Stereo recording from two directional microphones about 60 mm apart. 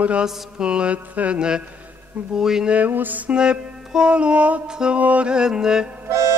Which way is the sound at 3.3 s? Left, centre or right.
Centre.